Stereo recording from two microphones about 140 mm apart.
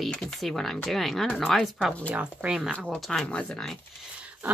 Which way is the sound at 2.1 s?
10° right (ahead or behind).